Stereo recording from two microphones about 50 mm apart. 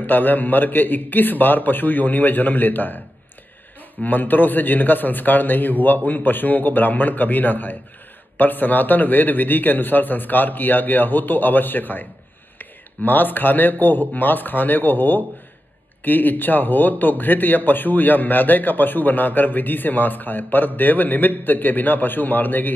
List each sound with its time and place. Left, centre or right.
0.0 s speech: left
4.0 s speech: left